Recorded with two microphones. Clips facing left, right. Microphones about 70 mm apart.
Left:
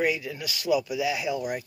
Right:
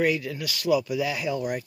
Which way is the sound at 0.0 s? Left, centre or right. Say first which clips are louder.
Right 2 dB; centre.